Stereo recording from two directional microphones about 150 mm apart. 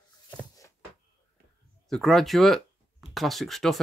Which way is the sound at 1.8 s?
Centre (ahead or behind).